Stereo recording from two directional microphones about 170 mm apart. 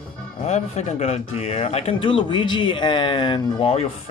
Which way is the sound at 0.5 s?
40° left (ahead or behind).